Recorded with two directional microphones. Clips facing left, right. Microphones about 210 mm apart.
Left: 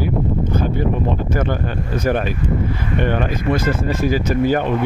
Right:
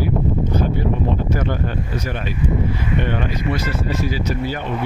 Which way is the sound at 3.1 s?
50° left (ahead or behind).